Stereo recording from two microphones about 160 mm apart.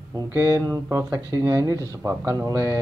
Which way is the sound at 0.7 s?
15° right (ahead or behind).